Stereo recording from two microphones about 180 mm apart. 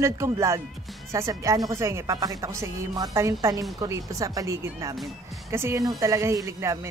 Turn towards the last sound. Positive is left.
turn(degrees=-15)  # may be behind; listen again after turning